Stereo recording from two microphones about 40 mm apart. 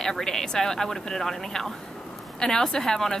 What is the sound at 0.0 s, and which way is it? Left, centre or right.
A woman's voice, centre.